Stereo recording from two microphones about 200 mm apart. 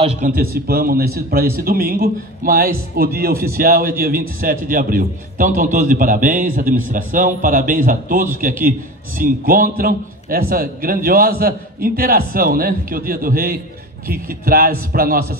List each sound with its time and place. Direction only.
0.0 s a man's voice: 40° right (ahead or behind)